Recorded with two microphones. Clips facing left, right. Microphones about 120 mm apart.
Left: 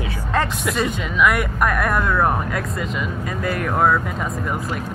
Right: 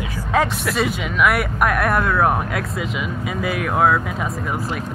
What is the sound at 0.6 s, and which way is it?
Speech, centre (ahead or behind).